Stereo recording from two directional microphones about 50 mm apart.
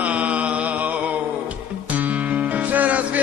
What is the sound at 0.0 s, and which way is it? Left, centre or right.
Mantra, right.